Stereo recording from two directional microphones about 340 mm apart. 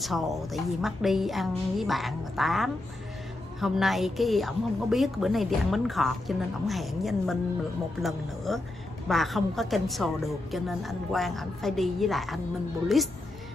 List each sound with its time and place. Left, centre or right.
0.0 s a woman's voice: centre
8.5 s a woman's voice: centre